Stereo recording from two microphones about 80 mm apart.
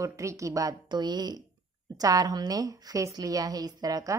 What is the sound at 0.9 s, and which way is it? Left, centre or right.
A woman's voice, right.